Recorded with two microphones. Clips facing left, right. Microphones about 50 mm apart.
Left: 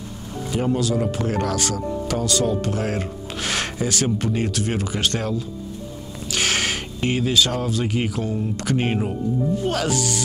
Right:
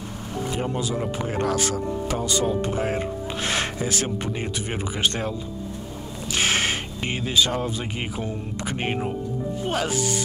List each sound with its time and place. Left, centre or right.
0.7 s speech: centre
6.3 s speech: centre